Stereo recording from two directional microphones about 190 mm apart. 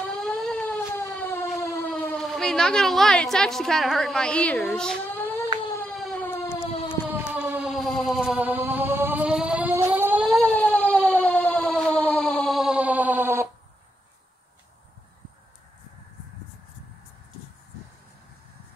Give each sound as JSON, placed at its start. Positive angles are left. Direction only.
{"t": 0.1, "sound": "siren", "side_deg": 0}
{"t": 1.6, "sound": "civil defense siren", "side_deg": 15}
{"t": 1.9, "sound": "speech", "side_deg": 5}
{"t": 5.9, "sound": "siren", "side_deg": 5}
{"t": 7.1, "sound": "a sound", "side_deg": -10}